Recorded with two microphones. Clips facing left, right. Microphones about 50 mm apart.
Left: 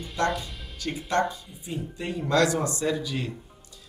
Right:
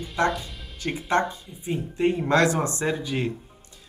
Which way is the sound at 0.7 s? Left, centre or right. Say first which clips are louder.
Right 3 dB; right.